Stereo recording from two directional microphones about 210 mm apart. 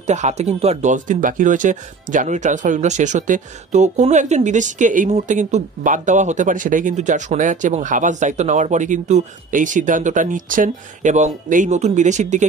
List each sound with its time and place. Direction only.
0.0 s speech: 35° right (ahead or behind)